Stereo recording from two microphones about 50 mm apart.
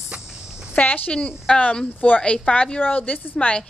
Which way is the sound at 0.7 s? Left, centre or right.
Left.